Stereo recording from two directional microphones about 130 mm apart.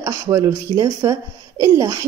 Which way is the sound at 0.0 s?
25° right (ahead or behind).